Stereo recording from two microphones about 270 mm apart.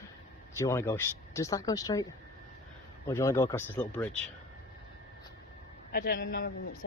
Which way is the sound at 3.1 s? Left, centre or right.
Centre.